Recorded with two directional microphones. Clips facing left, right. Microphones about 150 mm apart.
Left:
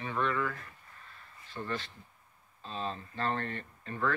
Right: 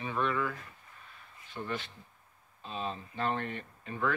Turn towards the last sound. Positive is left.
turn(degrees=-10)  # may be behind; listen again after turning